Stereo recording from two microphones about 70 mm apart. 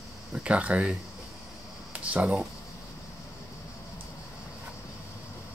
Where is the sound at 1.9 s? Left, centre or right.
Centre.